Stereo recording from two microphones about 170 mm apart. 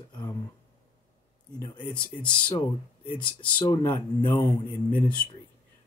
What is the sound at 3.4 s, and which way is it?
Speech, 20° left (ahead or behind).